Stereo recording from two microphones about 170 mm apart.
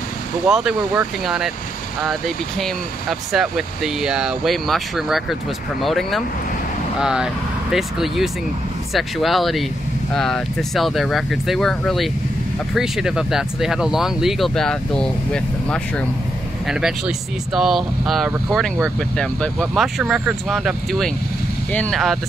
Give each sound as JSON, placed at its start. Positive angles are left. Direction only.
{"t": 0.5, "sound": "speech", "side_deg": -5}